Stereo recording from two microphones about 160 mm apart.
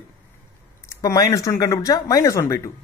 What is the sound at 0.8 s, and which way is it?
A man's voice, 20° left (ahead or behind).